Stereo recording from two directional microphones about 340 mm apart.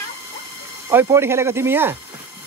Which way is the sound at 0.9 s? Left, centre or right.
Centre.